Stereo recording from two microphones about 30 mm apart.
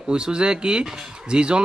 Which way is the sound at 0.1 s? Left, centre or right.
Right.